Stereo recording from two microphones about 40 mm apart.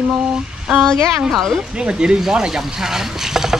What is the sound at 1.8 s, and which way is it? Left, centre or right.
Speech, right.